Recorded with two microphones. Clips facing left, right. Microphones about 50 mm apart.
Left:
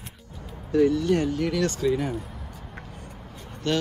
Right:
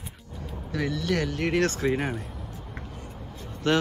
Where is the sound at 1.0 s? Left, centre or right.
Right.